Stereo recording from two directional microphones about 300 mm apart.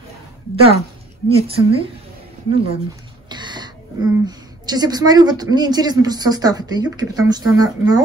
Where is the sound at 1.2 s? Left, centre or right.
Centre.